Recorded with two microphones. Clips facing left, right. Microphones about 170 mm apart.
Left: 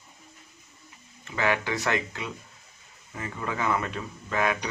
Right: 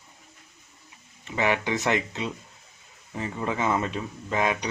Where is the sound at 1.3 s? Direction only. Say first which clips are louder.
Right 2 dB; 20° right (ahead or behind).